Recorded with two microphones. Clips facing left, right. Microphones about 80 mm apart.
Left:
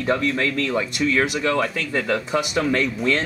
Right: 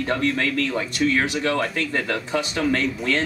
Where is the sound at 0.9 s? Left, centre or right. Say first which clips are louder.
Right 2 dB; centre.